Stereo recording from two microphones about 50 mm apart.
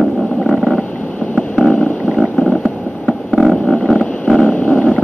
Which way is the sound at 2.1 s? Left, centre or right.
Centre.